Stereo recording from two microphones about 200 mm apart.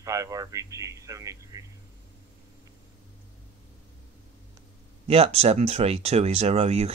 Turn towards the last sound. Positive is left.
turn(degrees=-30)  # may be behind; listen again after turning